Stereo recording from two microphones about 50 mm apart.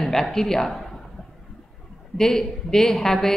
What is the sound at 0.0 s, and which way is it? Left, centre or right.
Speech, centre.